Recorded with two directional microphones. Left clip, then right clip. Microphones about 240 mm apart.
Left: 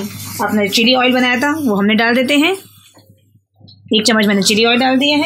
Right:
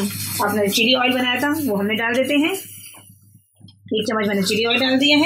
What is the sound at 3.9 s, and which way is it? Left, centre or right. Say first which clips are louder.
Speech: left 7 dB; left.